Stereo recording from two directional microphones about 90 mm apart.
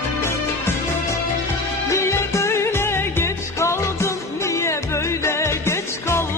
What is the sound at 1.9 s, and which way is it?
Music, 30° left (ahead or behind).